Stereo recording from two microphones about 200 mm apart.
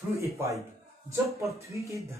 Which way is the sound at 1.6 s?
15° right (ahead or behind).